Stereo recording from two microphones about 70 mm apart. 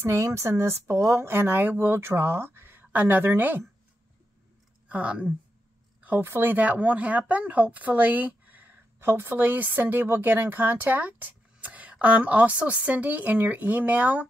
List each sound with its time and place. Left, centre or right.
0.1 s speech: right
4.8 s speech: centre
6.0 s speech: right